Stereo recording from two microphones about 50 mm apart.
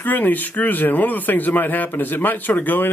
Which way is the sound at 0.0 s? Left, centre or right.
Left.